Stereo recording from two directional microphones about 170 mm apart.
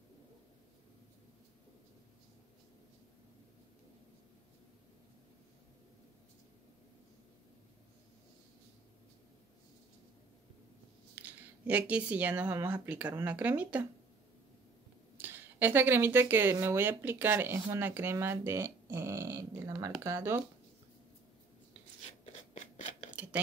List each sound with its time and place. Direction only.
11.1 s speech: 10° right (ahead or behind)
15.1 s speech: 10° right (ahead or behind)
22.2 s scissors: 40° left (ahead or behind)